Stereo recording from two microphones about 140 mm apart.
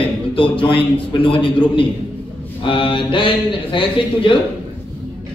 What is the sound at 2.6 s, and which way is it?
A man's voice, 40° left (ahead or behind).